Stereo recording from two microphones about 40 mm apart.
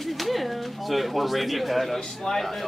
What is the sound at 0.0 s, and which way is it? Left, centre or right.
Pigeon, centre.